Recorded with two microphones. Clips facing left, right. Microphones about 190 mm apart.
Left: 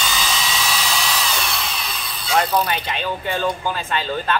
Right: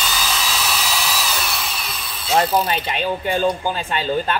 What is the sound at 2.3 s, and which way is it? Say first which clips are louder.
Pulleys: right 1 dB; 25° right (ahead or behind).